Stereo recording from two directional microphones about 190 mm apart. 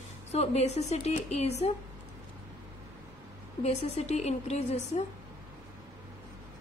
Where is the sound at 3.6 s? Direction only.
35° left (ahead or behind).